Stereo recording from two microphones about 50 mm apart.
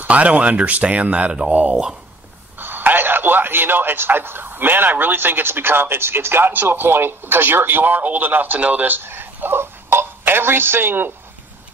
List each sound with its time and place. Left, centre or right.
0.0 s speech: right
2.6 s a man's voice: right